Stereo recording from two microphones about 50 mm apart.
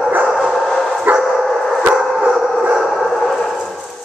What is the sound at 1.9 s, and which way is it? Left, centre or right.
Dog, centre.